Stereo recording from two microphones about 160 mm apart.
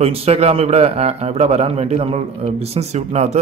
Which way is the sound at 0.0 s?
40° right (ahead or behind).